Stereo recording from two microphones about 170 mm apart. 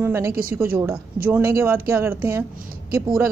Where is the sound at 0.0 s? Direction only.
15° right (ahead or behind).